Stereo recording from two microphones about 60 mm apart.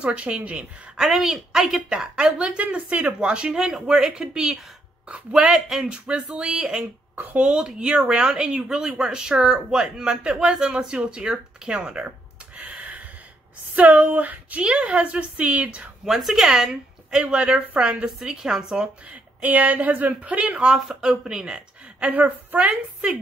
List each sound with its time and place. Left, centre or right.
0.0 s a woman's voice: centre
0.9 s speech: centre
2.1 s a woman's voice: centre
12.5 s a sound: right
13.7 s a woman's voice: right
16.1 s speech: centre
19.0 s a woman's voice: right
22.1 s a woman's voice: right